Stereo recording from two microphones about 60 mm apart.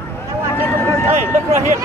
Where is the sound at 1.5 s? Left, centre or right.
Right.